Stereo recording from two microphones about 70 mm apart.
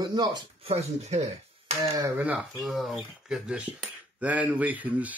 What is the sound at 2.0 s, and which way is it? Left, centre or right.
Speech, right.